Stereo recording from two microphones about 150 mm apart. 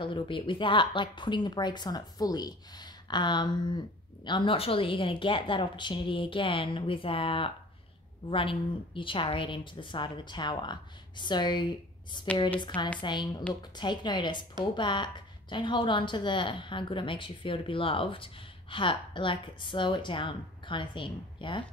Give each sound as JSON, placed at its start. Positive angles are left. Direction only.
{"t": 0.0, "sound": "a woman's voice", "side_deg": 35}